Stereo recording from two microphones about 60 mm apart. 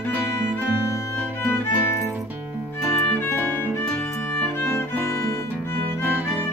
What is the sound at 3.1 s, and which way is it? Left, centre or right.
Music, left.